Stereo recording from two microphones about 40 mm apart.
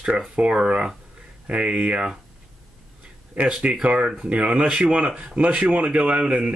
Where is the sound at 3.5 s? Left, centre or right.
Right.